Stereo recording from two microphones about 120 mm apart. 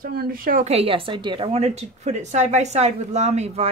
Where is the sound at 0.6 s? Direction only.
60° right (ahead or behind).